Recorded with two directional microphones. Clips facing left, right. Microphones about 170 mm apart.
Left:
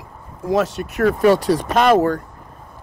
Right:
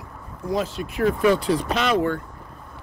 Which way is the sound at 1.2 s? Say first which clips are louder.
Left 5 dB; 40° left (ahead or behind).